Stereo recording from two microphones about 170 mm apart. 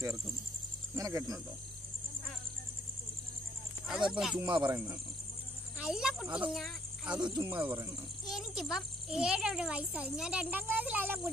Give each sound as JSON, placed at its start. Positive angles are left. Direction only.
{"t": 0.9, "sound": "speech", "side_deg": -20}
{"t": 3.8, "sound": "a child's voice", "side_deg": -5}
{"t": 4.6, "sound": "speech", "side_deg": -15}
{"t": 5.8, "sound": "a child's voice", "side_deg": -5}
{"t": 7.2, "sound": "speech", "side_deg": -25}
{"t": 8.3, "sound": "a child's voice", "side_deg": 0}